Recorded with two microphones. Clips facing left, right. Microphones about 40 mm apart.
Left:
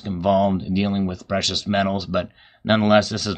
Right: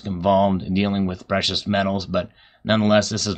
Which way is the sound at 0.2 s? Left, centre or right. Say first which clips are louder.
Right 1 dB; centre.